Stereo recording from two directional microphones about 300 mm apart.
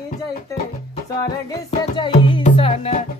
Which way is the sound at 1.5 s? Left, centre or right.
Centre.